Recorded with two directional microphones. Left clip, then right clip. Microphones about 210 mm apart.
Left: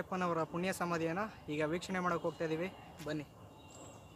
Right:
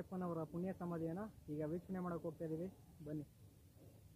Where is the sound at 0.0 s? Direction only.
15° left (ahead or behind).